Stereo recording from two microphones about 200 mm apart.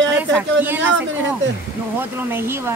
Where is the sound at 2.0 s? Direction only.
10° right (ahead or behind).